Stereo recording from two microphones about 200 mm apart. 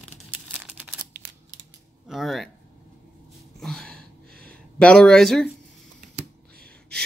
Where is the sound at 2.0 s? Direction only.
Centre (ahead or behind).